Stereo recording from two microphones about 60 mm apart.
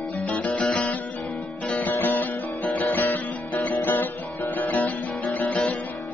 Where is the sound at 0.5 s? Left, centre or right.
Centre.